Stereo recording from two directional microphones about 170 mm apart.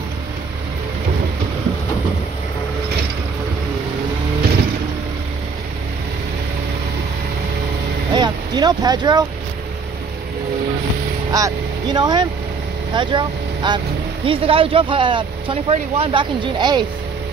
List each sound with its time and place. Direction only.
8.1 s vehicle: 25° right (ahead or behind)
11.3 s speech: 25° right (ahead or behind)